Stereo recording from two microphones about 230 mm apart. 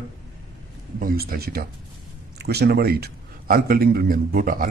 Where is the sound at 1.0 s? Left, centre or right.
Right.